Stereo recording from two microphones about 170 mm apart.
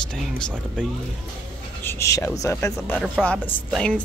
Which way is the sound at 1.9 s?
15° left (ahead or behind).